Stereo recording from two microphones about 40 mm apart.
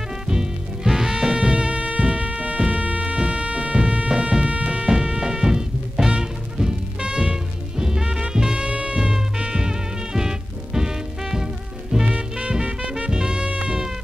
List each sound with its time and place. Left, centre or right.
0.3 s music: centre
12.1 s music: right